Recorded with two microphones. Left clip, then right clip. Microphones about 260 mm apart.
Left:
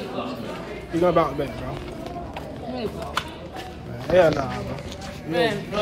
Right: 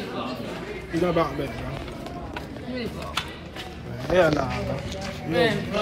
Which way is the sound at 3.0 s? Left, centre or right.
Centre.